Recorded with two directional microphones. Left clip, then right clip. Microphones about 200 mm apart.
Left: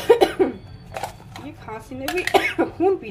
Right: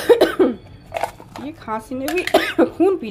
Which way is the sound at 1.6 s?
40° right (ahead or behind).